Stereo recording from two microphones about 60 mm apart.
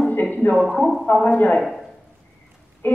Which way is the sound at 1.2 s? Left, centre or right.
Left.